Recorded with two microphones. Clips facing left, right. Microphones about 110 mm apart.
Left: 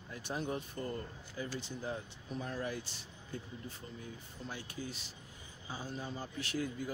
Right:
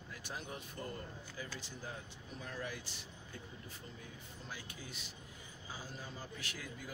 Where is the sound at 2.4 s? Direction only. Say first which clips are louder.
Left 4 dB; 30° left (ahead or behind).